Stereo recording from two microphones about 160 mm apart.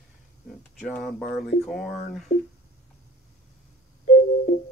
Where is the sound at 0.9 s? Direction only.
5° left (ahead or behind).